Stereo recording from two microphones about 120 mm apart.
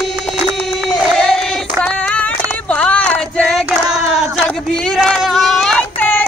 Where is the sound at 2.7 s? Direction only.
10° left (ahead or behind).